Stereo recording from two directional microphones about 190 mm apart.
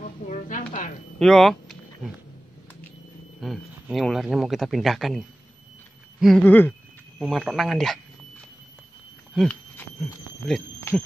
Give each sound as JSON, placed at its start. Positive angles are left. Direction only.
{"t": 0.3, "sound": "a sound", "side_deg": 45}
{"t": 1.2, "sound": "speech", "side_deg": 0}
{"t": 3.3, "sound": "speech", "side_deg": 0}
{"t": 9.3, "sound": "speech", "side_deg": 0}